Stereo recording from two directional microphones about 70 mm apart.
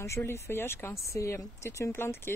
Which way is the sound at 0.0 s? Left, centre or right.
Left.